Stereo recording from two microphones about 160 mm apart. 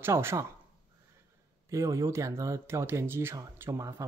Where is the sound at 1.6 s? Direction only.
20° right (ahead or behind).